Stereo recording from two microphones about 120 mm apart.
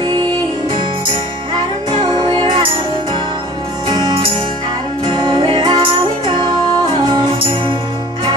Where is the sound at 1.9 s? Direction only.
40° right (ahead or behind).